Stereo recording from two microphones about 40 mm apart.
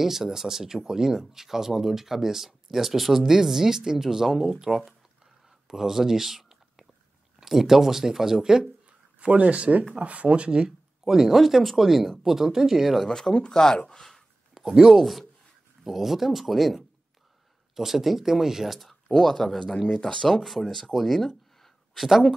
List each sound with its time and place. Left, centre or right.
0.0 s speech: centre
5.7 s a sound: centre
7.3 s speech: centre
9.2 s speech: right
11.1 s speech: centre
13.0 s speech: centre
14.5 s speech: centre
20.3 s speech: centre
21.5 s a sound: centre